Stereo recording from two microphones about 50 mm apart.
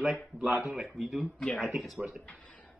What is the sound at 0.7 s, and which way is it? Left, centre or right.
Speech, centre.